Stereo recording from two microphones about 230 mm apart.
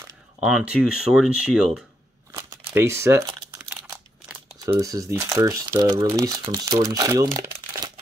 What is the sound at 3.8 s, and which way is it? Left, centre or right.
Speech, centre.